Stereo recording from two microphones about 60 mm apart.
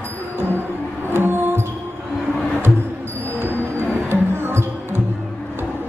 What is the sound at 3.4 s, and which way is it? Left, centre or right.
Music, right.